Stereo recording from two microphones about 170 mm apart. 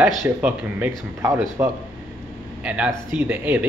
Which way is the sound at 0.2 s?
10° right (ahead or behind).